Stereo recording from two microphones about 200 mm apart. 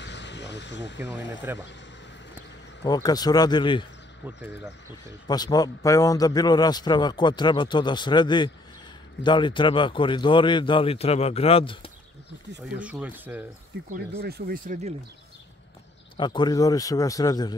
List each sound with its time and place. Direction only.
0.0 s vehicle: 60° left (ahead or behind)
1.1 s speech: 10° right (ahead or behind)
2.8 s a man's voice: 20° left (ahead or behind)
5.3 s a man's voice: 20° left (ahead or behind)
12.7 s speech: 5° right (ahead or behind)
14.1 s speech: 50° right (ahead or behind)
16.2 s a man's voice: 20° left (ahead or behind)